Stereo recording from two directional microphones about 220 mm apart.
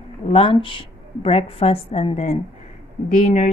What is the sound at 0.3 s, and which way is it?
Speech, 25° left (ahead or behind).